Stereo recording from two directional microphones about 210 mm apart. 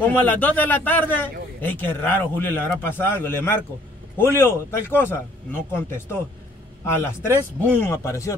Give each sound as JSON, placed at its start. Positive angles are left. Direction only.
{"t": 0.0, "sound": "a man's voice", "side_deg": 10}